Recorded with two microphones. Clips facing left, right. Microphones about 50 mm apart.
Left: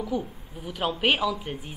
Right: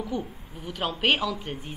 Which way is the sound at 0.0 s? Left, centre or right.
Centre.